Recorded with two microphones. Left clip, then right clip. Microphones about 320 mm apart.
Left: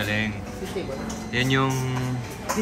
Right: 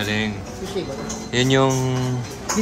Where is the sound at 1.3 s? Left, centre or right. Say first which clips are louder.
Right 5 dB; centre.